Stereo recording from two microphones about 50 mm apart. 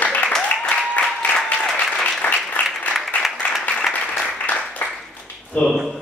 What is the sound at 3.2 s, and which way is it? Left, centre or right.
Applause, centre.